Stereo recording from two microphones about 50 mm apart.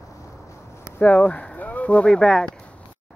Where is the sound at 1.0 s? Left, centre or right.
Left.